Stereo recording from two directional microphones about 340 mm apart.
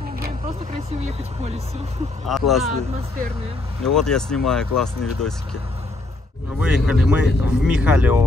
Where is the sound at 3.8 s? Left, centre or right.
Centre.